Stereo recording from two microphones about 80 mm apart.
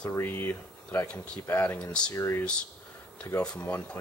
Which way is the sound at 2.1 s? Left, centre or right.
Left.